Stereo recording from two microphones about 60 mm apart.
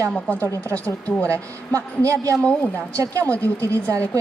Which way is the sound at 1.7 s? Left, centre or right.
Right.